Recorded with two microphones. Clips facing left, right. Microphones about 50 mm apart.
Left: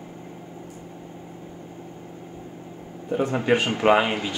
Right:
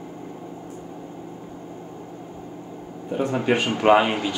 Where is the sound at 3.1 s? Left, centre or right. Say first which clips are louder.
Even; centre.